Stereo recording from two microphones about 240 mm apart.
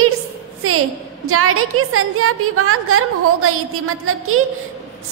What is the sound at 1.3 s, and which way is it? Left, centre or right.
A woman's voice, right.